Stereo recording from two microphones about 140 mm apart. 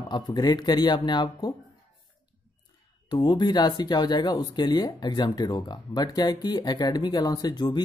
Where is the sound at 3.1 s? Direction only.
30° left (ahead or behind).